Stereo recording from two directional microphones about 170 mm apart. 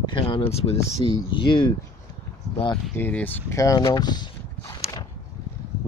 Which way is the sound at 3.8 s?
25° left (ahead or behind).